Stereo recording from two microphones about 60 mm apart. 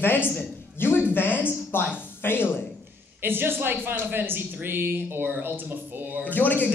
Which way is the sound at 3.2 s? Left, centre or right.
Right.